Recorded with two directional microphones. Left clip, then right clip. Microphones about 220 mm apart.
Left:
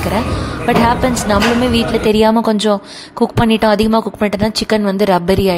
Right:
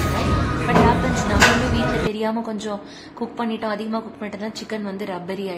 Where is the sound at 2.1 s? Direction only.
40° left (ahead or behind).